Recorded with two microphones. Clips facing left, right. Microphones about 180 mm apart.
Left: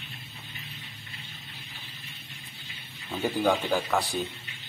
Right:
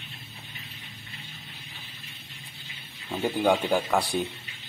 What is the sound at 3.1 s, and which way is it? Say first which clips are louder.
Speech: right 2 dB; 10° right (ahead or behind).